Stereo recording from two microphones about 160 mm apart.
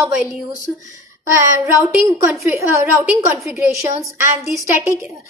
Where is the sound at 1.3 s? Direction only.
20° right (ahead or behind).